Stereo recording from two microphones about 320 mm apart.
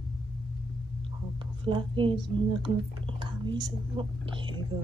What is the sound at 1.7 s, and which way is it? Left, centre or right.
Speech, centre.